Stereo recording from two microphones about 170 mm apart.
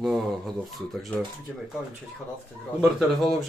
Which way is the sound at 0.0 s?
Centre (ahead or behind).